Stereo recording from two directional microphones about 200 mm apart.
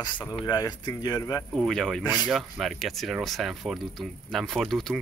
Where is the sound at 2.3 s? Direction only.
Centre (ahead or behind).